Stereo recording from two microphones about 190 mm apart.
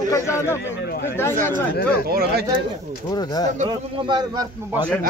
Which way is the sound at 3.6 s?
20° right (ahead or behind).